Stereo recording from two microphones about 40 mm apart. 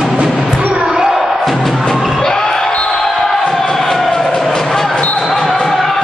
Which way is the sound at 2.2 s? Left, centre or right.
Centre.